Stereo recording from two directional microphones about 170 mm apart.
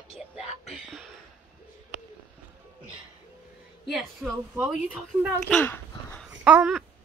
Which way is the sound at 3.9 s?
Centre (ahead or behind).